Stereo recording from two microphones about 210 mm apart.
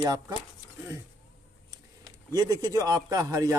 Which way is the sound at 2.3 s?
15° right (ahead or behind).